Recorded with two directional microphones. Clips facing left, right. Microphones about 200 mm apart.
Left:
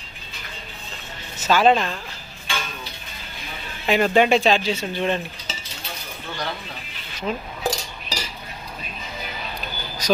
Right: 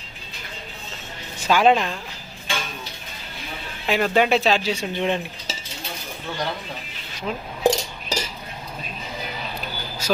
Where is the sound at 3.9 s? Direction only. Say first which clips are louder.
Left 2 dB; centre (ahead or behind).